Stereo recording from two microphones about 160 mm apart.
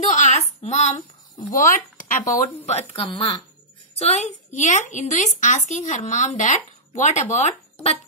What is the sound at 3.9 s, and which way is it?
A woman's voice, 45° left (ahead or behind).